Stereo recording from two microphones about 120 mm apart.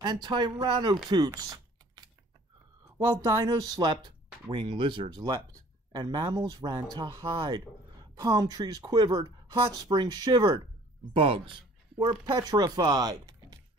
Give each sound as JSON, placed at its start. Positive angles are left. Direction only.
{"t": 0.0, "sound": "speech", "side_deg": -35}
{"t": 11.1, "sound": "speech", "side_deg": -45}